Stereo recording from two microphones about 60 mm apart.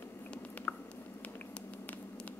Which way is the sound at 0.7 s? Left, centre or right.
Left.